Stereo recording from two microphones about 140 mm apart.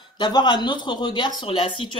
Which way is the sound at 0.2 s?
35° left (ahead or behind).